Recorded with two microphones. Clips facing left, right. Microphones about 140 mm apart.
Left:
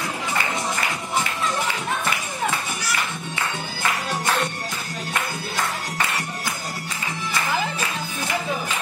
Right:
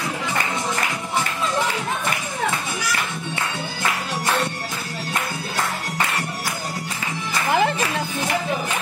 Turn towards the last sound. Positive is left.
turn(degrees=-65)  # may be behind; listen again after turning